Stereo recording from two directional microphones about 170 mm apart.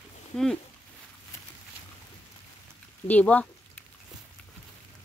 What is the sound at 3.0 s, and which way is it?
Speech, 10° left (ahead or behind).